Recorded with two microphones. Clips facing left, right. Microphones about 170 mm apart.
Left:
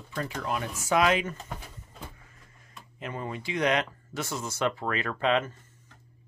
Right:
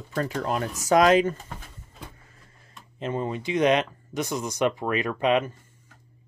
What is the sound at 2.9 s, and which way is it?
Speech, 25° right (ahead or behind).